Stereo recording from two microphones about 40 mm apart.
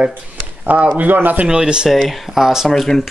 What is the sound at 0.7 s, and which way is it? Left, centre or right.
Speech, right.